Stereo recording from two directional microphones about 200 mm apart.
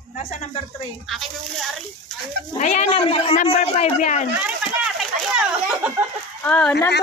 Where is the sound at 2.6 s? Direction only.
35° left (ahead or behind).